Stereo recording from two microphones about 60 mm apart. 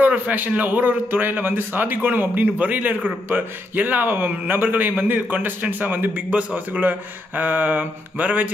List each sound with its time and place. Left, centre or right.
0.0 s a man's voice: right